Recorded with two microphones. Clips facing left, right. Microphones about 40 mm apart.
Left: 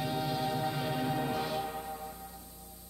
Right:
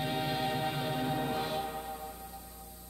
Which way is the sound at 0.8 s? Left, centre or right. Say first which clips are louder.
Even; centre.